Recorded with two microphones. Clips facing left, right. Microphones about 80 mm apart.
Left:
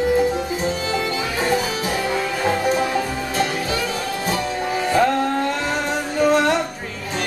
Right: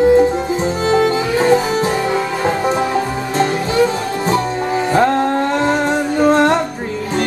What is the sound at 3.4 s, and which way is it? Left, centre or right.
Music, right.